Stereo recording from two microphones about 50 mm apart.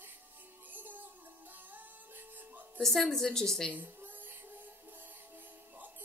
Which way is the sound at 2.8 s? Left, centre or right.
Centre.